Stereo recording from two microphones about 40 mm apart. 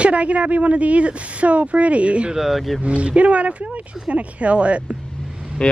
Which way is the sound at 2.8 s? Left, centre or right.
Right.